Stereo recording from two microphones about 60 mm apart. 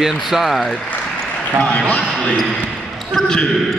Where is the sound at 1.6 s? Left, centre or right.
Left.